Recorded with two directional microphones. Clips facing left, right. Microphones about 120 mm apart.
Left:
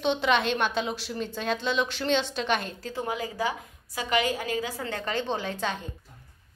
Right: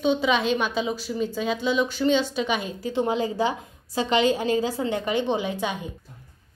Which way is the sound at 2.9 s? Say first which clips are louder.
Right 8 dB; 25° right (ahead or behind).